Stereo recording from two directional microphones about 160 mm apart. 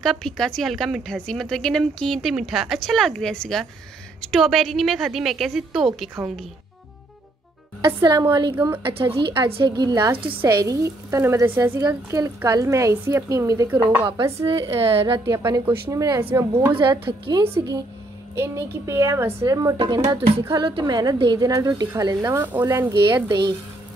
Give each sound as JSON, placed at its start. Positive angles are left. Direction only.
{"t": 0.0, "sound": "a woman's voice", "side_deg": 0}
{"t": 7.8, "sound": "a woman's voice", "side_deg": -25}
{"t": 8.5, "sound": "a woman's voice", "side_deg": -10}
{"t": 9.2, "sound": "a woman's voice", "side_deg": -30}
{"t": 14.8, "sound": "a woman's voice", "side_deg": -35}
{"t": 15.1, "sound": "a woman's voice", "side_deg": -20}
{"t": 16.7, "sound": "a woman's voice", "side_deg": -30}
{"t": 23.0, "sound": "a woman's voice", "side_deg": -25}